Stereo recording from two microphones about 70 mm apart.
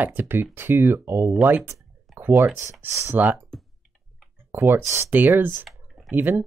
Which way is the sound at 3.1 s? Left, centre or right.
Right.